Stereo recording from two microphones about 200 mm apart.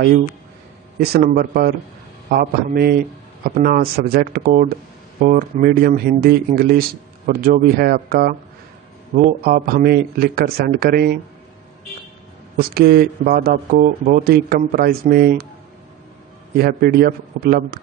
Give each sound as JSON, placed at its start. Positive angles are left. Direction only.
{"t": 0.9, "sound": "speech", "side_deg": -50}
{"t": 12.5, "sound": "speech", "side_deg": -50}
{"t": 16.5, "sound": "speech", "side_deg": -50}